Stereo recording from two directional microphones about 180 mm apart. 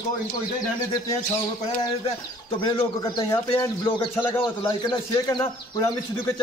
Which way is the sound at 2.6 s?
25° left (ahead or behind).